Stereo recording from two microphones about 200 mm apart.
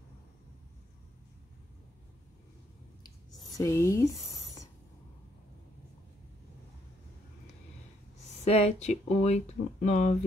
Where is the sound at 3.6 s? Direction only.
15° left (ahead or behind).